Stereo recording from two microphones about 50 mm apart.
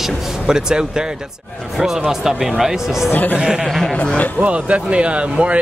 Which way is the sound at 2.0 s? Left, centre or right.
Centre.